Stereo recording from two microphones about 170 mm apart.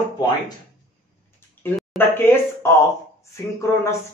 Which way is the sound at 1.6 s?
10° left (ahead or behind).